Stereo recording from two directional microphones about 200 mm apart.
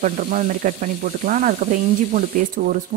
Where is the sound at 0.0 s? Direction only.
40° right (ahead or behind).